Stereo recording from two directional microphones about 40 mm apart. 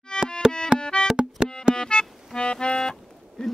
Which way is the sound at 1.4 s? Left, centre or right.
Right.